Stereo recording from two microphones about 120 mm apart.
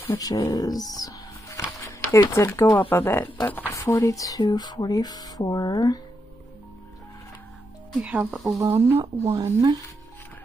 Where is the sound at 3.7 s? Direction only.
25° left (ahead or behind).